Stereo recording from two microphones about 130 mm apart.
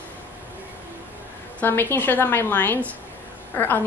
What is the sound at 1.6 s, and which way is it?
A woman's voice, 15° left (ahead or behind).